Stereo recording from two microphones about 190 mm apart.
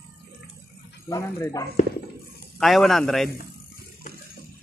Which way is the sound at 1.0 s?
15° left (ahead or behind).